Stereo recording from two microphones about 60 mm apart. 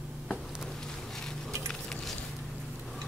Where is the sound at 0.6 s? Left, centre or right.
Centre.